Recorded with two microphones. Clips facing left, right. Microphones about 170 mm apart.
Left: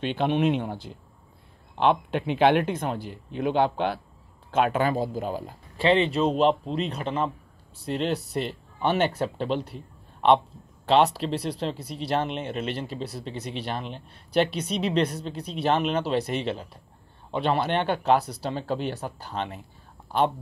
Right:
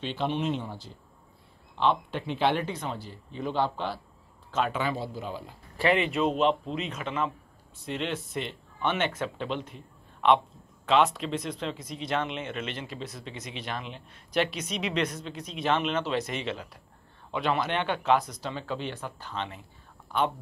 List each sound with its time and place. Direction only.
0.0 s speech: 60° left (ahead or behind)
5.8 s speech: 30° left (ahead or behind); by 19.6 s 45° left (ahead or behind)